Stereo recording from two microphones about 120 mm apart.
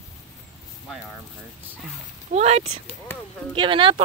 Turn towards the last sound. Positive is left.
turn(degrees=-45)  # may be behind; listen again after turning